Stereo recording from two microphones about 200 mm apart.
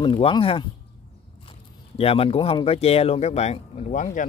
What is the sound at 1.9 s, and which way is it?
Speech, 30° left (ahead or behind).